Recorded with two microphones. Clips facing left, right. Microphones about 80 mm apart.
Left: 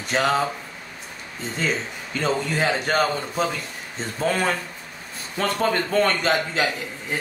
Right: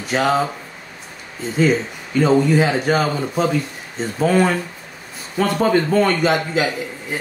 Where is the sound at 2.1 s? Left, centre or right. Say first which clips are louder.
Right 9 dB; centre.